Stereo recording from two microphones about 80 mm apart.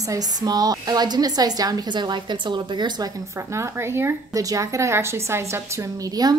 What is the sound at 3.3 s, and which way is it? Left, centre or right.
Speech, right.